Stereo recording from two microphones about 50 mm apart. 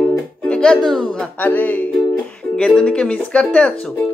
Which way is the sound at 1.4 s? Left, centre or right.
Left.